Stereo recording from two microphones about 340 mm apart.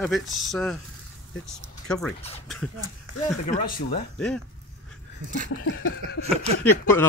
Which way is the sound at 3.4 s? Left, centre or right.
Left.